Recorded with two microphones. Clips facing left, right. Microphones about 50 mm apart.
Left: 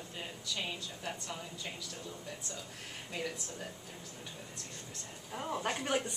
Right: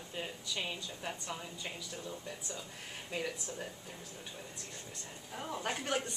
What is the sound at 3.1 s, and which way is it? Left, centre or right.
Speech, centre.